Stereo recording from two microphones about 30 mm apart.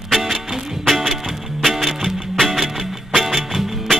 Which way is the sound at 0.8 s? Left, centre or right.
Centre.